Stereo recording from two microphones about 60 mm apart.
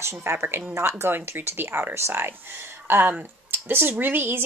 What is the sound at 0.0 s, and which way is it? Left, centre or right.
Speech, right.